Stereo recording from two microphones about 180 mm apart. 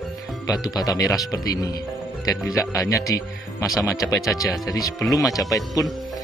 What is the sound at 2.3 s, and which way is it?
Speech, 20° left (ahead or behind).